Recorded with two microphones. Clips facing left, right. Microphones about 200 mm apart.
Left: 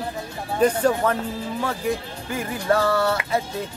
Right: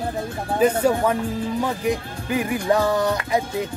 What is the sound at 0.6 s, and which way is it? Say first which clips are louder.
Speech: right 1 dB; 10° right (ahead or behind).